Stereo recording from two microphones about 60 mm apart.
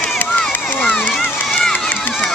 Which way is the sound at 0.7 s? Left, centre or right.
Left.